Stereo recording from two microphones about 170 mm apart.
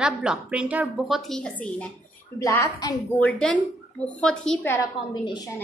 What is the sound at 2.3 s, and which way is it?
Speech, 15° left (ahead or behind).